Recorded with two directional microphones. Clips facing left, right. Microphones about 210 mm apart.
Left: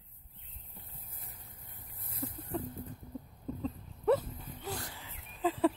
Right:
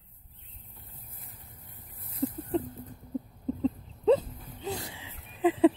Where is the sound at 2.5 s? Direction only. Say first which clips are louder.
Right 7 dB; 20° right (ahead or behind).